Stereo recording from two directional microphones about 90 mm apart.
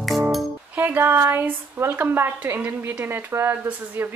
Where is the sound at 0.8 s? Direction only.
25° right (ahead or behind).